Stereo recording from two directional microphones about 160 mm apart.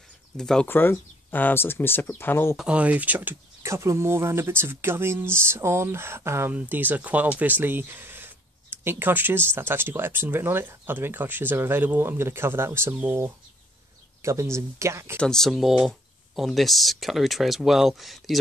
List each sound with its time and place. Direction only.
0.4 s speech: 5° left (ahead or behind)
2.5 s speech: 5° right (ahead or behind)
15.1 s speech: 5° left (ahead or behind)